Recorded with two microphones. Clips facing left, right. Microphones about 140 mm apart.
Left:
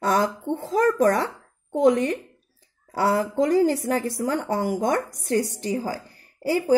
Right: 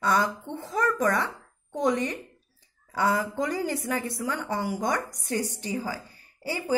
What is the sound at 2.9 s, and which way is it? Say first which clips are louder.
A woman's voice: left 4 dB; 40° left (ahead or behind).